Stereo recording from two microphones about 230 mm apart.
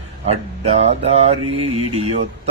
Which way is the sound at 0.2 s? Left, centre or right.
Right.